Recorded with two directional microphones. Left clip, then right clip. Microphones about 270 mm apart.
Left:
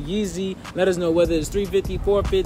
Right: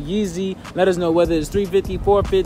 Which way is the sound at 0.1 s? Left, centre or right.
Centre.